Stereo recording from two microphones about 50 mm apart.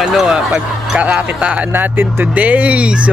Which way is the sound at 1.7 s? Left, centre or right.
Right.